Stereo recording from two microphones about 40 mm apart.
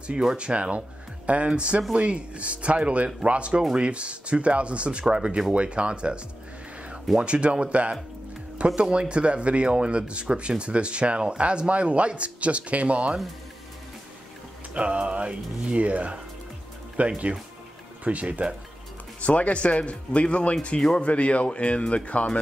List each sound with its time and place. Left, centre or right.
0.4 s speech: right
14.7 s speech: right
19.2 s speech: left